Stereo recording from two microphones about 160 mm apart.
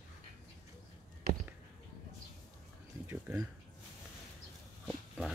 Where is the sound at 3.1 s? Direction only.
15° right (ahead or behind).